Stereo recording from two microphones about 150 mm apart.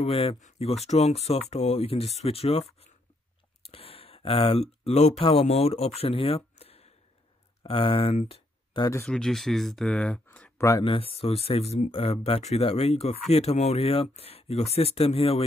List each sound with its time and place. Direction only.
0.0 s speech: 35° left (ahead or behind)
0.4 s speech: 50° left (ahead or behind)
3.7 s speech: 40° left (ahead or behind)
9.0 s speech: 5° left (ahead or behind)
10.8 s speech: 35° left (ahead or behind)